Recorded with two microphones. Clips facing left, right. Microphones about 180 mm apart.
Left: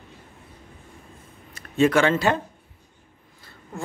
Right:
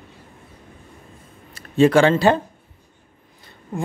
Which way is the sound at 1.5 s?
30° right (ahead or behind).